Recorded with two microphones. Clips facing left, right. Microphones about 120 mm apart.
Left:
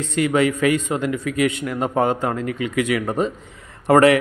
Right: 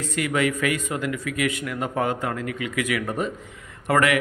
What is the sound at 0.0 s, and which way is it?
Speech, 25° left (ahead or behind).